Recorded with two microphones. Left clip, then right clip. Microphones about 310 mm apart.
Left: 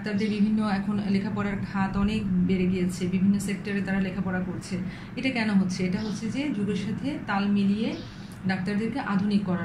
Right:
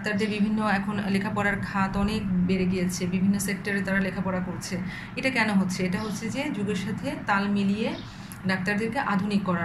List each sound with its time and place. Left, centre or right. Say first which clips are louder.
0.2 s a man's voice: right 1 dB; right
5.2 s a man's voice: right 3 dB; right